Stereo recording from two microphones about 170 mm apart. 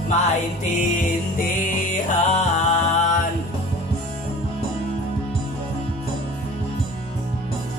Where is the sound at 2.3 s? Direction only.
45° left (ahead or behind).